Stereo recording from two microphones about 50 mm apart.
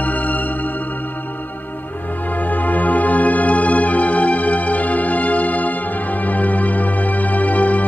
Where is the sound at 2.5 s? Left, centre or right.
Left.